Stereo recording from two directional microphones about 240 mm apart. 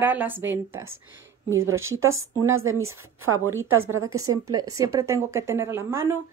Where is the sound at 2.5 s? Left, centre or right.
Right.